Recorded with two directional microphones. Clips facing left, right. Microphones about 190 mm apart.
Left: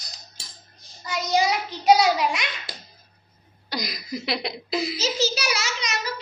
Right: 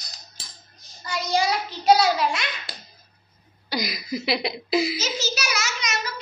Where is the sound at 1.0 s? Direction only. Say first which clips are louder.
Left 1 dB; 20° left (ahead or behind).